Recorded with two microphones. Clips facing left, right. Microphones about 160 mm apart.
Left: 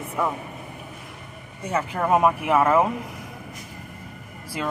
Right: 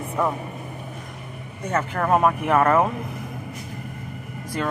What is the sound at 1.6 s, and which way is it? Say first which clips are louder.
Speech: right 1 dB; 10° left (ahead or behind).